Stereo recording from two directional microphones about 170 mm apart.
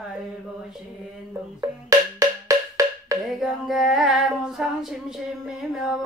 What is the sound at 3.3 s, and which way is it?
Female singing, centre (ahead or behind).